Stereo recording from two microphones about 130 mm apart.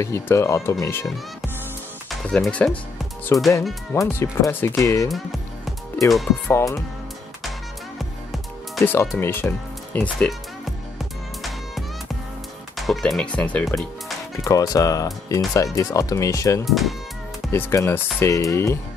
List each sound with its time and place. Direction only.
0.0 s speech: 20° left (ahead or behind)
2.0 s speech: 5° left (ahead or behind)
3.3 s speech: 20° left (ahead or behind)
5.1 s music: centre (ahead or behind)
6.4 s speech: 20° left (ahead or behind)
8.0 s music: centre (ahead or behind)
9.2 s speech: 15° left (ahead or behind)
10.1 s speech: 5° left (ahead or behind)
12.7 s speech: centre (ahead or behind)
14.3 s speech: 25° left (ahead or behind)
16.6 s speech: centre (ahead or behind)
17.5 s speech: 20° left (ahead or behind)